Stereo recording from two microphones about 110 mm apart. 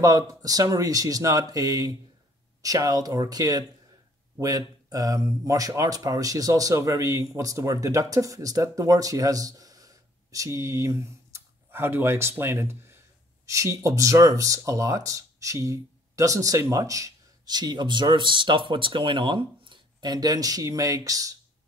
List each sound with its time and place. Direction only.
0.0 s speech: 35° right (ahead or behind)